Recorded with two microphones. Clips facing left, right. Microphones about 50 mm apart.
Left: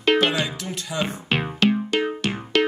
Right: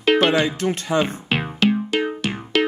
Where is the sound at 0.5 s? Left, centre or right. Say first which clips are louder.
Right 9 dB; right.